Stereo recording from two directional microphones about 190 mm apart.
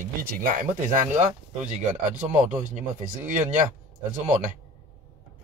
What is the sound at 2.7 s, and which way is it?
Speech, 40° right (ahead or behind).